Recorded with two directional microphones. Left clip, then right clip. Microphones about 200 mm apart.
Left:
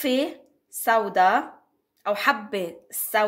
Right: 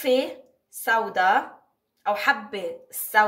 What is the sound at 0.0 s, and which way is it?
Speech, 50° left (ahead or behind).